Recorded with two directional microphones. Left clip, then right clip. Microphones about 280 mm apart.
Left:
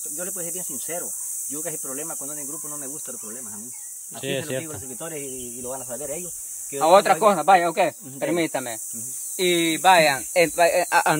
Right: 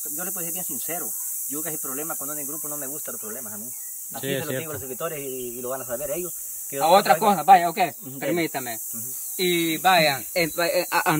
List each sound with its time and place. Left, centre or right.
0.2 s speech: centre
4.2 s speech: centre
6.8 s speech: centre